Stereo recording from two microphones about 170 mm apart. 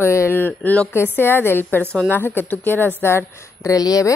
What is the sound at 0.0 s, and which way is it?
A woman's voice, 15° left (ahead or behind).